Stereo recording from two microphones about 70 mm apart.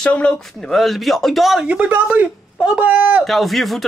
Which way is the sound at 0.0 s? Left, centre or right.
Centre.